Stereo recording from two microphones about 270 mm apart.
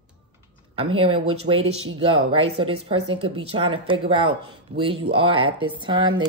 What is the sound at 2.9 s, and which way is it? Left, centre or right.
Speech, right.